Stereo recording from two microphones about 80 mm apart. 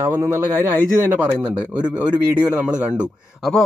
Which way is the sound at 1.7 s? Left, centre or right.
Centre.